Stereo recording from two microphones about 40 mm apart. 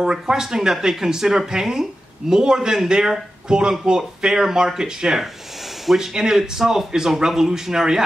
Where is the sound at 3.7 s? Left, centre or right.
Centre.